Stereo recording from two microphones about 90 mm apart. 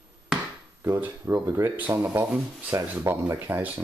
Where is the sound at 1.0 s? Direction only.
25° right (ahead or behind).